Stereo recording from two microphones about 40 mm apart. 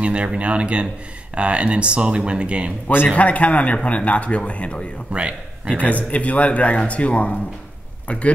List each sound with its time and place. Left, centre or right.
0.0 s speech: right
3.2 s a man's voice: left
5.1 s a man's voice: right
5.8 s a man's voice: left